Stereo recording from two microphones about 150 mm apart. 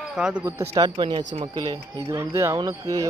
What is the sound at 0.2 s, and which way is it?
Speech, 5° right (ahead or behind).